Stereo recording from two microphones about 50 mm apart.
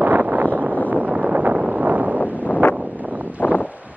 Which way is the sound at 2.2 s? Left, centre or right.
Left.